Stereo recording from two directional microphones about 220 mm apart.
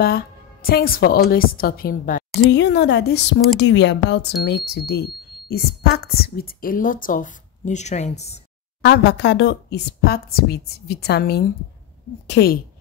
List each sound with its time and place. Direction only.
0.0 s a woman's voice: 45° left (ahead or behind)
2.5 s a woman's voice: 50° left (ahead or behind); by 8.4 s 30° left (ahead or behind)
8.8 s a woman's voice: 50° left (ahead or behind)